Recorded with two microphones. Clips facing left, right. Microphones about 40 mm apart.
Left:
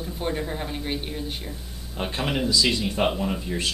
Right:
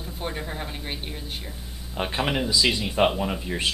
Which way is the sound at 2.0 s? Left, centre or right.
Centre.